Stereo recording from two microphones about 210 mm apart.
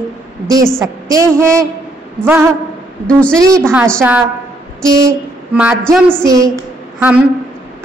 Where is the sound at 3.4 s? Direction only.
15° right (ahead or behind).